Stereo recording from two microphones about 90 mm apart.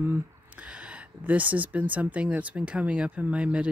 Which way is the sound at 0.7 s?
10° right (ahead or behind).